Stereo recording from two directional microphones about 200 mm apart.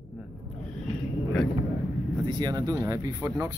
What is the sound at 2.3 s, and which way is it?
Speech, 20° right (ahead or behind).